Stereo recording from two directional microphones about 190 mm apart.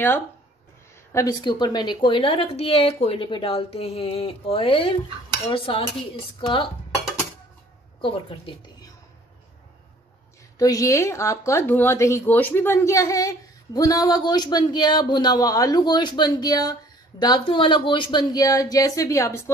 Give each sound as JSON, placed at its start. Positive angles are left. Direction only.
{"t": 1.1, "sound": "speech", "side_deg": 20}
{"t": 8.0, "sound": "a woman's voice", "side_deg": 25}
{"t": 10.6, "sound": "speech", "side_deg": 20}